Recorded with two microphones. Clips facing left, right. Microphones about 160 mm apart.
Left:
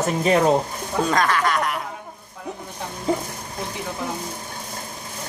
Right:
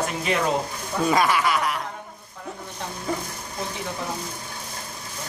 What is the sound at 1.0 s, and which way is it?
Speech, 10° right (ahead or behind).